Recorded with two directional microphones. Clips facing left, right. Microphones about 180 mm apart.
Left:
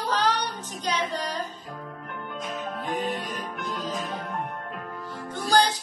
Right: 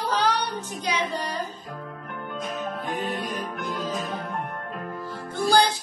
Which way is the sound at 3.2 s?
10° right (ahead or behind).